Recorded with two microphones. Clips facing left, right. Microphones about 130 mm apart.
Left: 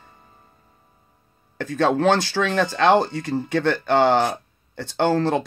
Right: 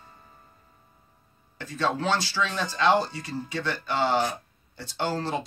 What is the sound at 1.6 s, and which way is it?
Speech, 60° left (ahead or behind).